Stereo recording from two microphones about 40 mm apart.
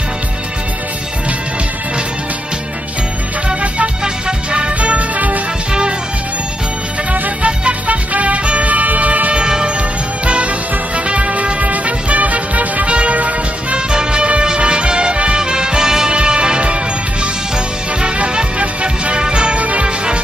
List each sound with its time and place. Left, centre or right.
3.4 s music: right
5.7 s music: right
7.1 s music: right
9.3 s music: right
13.7 s music: right
16.1 s music: right
18.0 s music: right
19.6 s music: right